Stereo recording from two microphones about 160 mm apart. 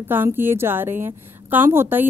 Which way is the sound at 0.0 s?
15° right (ahead or behind).